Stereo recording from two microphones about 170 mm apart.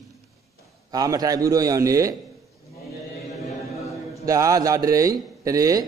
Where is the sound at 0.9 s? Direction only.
20° right (ahead or behind).